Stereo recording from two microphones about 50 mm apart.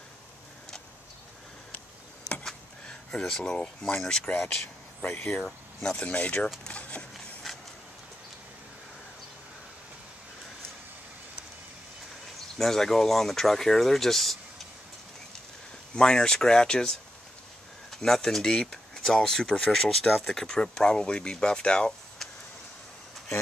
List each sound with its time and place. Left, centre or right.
2.4 s a sound: centre
4.3 s speech: left
5.0 s speech: left
5.4 s speech: centre
5.9 s speech: left
7.5 s a sound: centre
12.4 s speech: centre
16.0 s speech: centre